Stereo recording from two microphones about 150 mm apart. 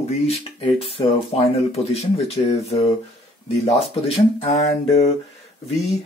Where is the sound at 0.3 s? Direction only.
40° left (ahead or behind).